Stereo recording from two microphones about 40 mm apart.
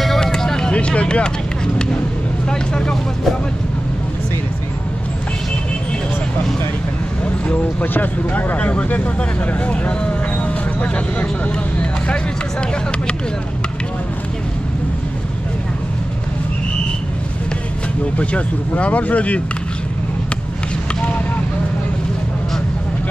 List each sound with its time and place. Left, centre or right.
0.2 s vehicle: centre
0.7 s speech: left
2.5 s vehicle: centre
7.8 s speech: left
18.1 s speech: left